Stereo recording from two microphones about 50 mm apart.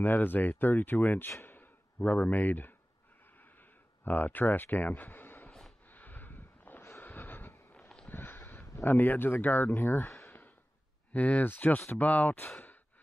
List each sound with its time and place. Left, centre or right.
0.0 s speech: left
1.4 s sigh: left
2.0 s speech: left
4.0 s speech: left
5.9 s a sound: left
11.1 s speech: left
11.5 s speech: left